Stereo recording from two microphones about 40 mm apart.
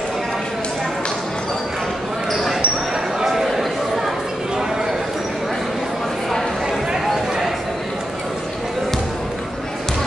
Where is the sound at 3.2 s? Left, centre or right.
Centre.